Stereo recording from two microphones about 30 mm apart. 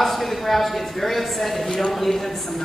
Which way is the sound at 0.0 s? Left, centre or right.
Centre.